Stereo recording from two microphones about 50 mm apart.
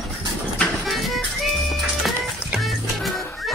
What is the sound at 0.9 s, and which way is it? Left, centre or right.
Music, centre.